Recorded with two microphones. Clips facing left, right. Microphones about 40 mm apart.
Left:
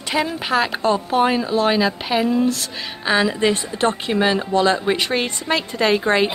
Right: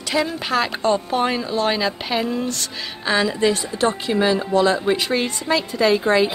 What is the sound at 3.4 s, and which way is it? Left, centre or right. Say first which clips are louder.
Speech: even; left.